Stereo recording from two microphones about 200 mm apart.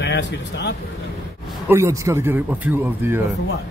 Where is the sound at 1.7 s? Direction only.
15° right (ahead or behind).